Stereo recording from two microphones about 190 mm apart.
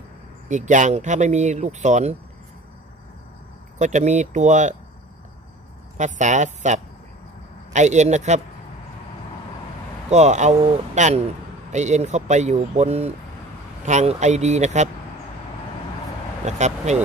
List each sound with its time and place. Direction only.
0.5 s speech: 40° right (ahead or behind)
3.7 s speech: 40° right (ahead or behind)
5.9 s speech: 40° right (ahead or behind)
10.0 s speech: 35° right (ahead or behind)
16.4 s speech: 35° right (ahead or behind)